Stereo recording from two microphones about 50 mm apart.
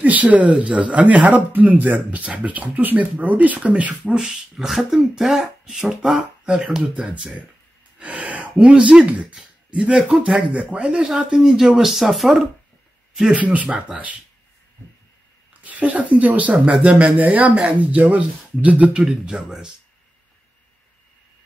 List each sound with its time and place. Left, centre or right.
0.0 s speech: right
4.3 s speech: centre
8.0 s speech: right; by 10.4 s centre
10.5 s speech: right; by 12.4 s centre
13.1 s speech: centre
13.4 s speech: right
15.6 s speech: right
19.3 s speech: centre